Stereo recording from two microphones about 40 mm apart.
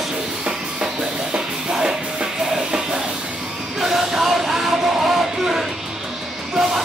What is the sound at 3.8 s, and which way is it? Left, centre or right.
Music, centre.